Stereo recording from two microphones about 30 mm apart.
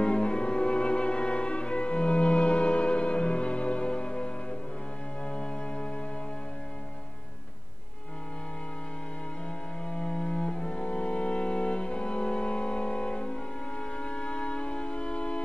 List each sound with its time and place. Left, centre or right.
0.0 s music: left
9.8 s cello: left